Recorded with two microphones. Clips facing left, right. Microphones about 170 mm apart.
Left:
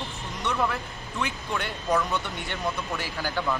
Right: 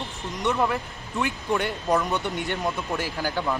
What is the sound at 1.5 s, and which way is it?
Speech, 20° right (ahead or behind).